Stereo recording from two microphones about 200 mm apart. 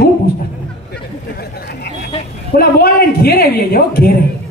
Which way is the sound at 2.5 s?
50° left (ahead or behind).